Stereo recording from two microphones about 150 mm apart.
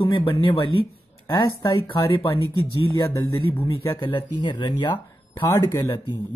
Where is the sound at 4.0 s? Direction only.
35° left (ahead or behind).